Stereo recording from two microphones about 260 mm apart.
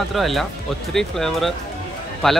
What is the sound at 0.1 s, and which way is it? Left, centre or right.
Speech, centre.